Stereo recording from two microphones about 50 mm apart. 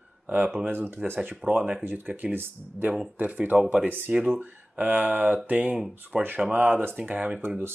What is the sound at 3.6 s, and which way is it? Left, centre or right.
Speech, centre.